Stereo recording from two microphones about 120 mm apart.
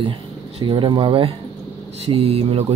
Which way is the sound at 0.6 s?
40° right (ahead or behind).